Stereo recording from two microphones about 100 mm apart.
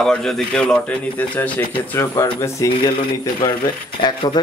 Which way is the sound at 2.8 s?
50° left (ahead or behind).